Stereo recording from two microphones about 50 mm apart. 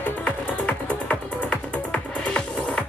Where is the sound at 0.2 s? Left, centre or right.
Left.